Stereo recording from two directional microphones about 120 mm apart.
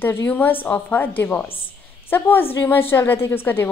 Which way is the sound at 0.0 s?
15° left (ahead or behind).